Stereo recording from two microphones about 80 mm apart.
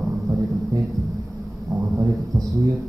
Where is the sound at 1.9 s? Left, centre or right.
Right.